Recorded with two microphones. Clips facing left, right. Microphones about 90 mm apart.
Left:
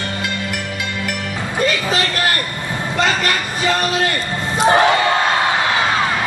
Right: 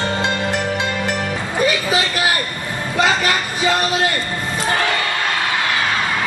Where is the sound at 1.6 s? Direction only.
10° right (ahead or behind).